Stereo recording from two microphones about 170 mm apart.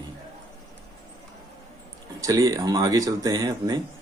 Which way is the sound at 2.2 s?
20° right (ahead or behind).